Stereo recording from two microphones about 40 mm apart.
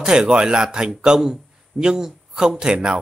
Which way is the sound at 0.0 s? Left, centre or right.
Centre.